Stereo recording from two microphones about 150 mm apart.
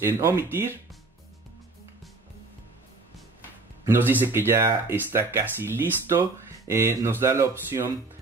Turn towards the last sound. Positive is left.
turn(degrees=-15)  # may be behind; listen again after turning